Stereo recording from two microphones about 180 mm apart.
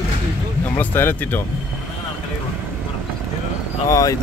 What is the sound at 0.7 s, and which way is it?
Speech, 10° left (ahead or behind).